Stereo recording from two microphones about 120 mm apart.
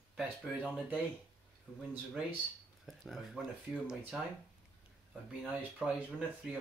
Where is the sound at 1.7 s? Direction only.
Centre (ahead or behind).